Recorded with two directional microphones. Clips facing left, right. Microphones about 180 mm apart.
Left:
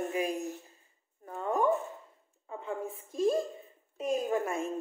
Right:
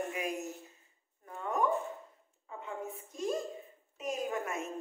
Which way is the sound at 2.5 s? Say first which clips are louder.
Left 4 dB; 30° left (ahead or behind).